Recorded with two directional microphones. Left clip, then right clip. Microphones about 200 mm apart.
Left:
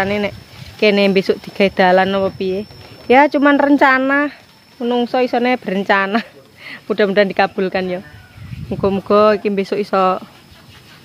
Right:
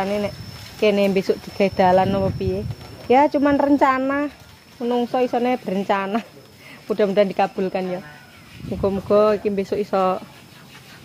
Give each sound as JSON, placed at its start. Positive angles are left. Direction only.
{"t": 0.0, "sound": "speech", "side_deg": 35}